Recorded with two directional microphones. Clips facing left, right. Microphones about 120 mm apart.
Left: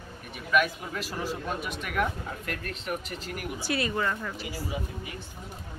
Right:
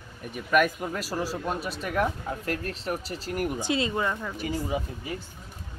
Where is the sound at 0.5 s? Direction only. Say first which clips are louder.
Right 3 dB; 45° right (ahead or behind).